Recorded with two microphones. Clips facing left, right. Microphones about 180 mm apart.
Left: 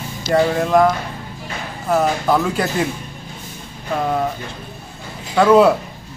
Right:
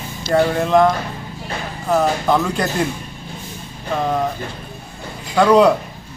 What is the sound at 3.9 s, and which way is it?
Speech, 5° left (ahead or behind).